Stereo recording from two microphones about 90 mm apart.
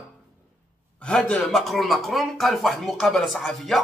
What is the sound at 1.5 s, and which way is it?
Speech, centre (ahead or behind).